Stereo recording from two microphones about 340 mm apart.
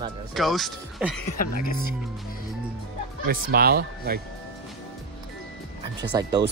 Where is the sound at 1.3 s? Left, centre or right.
Left.